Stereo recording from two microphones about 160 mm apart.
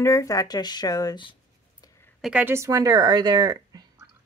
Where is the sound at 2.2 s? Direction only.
10° right (ahead or behind); by 3.9 s 25° right (ahead or behind).